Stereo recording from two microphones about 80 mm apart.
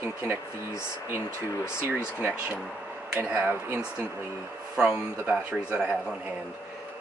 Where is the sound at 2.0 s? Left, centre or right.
Left.